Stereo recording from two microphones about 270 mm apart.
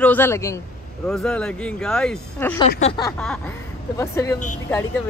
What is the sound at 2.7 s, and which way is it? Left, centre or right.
Speech, left.